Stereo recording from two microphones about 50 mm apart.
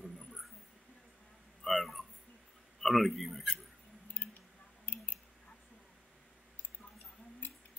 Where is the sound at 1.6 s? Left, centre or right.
Centre.